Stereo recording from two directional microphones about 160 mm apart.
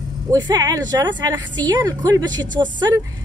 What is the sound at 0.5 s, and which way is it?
Speech, 25° right (ahead or behind).